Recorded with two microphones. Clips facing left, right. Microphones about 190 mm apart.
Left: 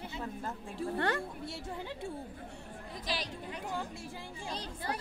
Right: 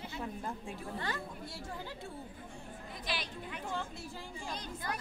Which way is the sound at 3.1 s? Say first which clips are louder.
Left 2 dB; 35° left (ahead or behind).